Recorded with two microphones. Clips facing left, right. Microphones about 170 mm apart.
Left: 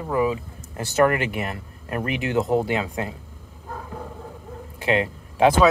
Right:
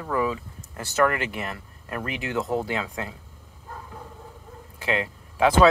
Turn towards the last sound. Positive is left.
turn(degrees=20)  # may be behind; listen again after turning